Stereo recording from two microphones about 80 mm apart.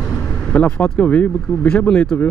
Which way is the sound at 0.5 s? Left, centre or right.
Centre.